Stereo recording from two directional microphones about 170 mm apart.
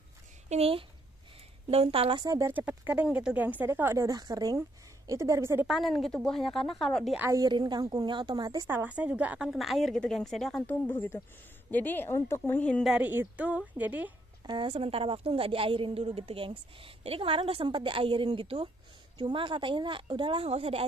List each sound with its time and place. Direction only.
0.5 s a woman's voice: 35° right (ahead or behind); by 5.7 s 15° right (ahead or behind)
5.7 s a woman's voice: centre (ahead or behind)
7.2 s speech: 20° right (ahead or behind)
8.6 s a woman's voice: 10° right (ahead or behind)
14.4 s a woman's voice: 30° right (ahead or behind)